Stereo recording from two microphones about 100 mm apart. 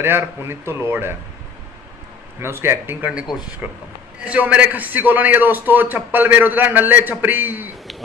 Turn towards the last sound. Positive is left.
turn(degrees=-20)  # may be behind; listen again after turning